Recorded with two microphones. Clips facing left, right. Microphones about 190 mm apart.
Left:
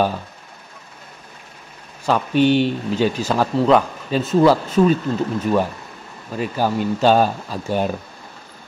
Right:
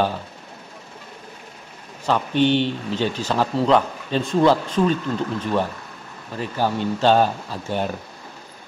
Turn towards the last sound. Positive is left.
turn(degrees=15)  # may be behind; listen again after turning